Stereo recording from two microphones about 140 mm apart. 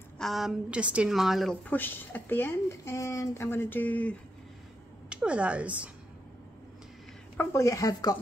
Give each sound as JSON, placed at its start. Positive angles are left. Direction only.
{"t": 0.2, "sound": "a woman's voice", "side_deg": 0}
{"t": 5.1, "sound": "speech", "side_deg": -5}
{"t": 7.3, "sound": "speech", "side_deg": 20}